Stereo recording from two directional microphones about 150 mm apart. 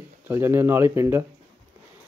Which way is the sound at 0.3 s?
15° right (ahead or behind).